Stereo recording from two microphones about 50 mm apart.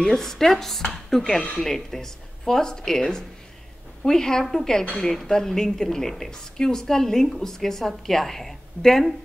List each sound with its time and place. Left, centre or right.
0.0 s a woman's voice: centre
0.8 s a sound: centre
1.6 s a woman's voice: centre